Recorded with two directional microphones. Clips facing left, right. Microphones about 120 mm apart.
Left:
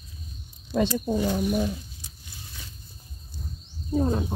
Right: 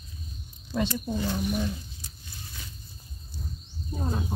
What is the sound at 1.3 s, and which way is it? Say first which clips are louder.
Speech: left 4 dB; 50° left (ahead or behind).